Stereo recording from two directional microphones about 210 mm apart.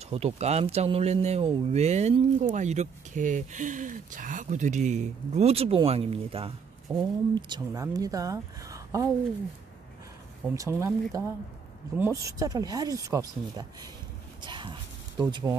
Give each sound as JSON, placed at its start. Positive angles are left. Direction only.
{"t": 0.1, "sound": "speech", "side_deg": -30}
{"t": 10.5, "sound": "speech", "side_deg": -15}
{"t": 14.4, "sound": "a sound", "side_deg": -20}